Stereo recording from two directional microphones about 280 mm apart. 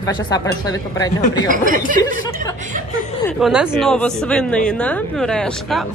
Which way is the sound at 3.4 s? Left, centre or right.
Centre.